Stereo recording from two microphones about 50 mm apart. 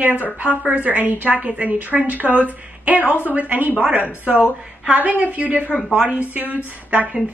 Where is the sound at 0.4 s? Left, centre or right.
Right.